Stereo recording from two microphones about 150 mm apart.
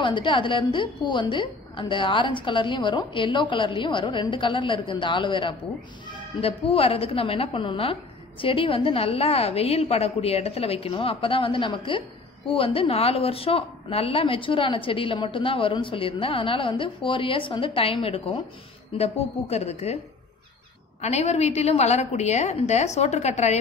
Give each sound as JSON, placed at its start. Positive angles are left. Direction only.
{"t": 0.0, "sound": "a woman's voice", "side_deg": 35}
{"t": 21.0, "sound": "a woman's voice", "side_deg": 45}